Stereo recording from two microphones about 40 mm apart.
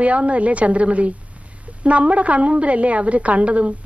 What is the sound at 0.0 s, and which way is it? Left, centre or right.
A woman's voice, right.